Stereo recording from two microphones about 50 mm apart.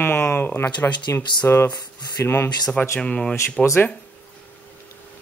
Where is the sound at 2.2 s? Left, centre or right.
Left.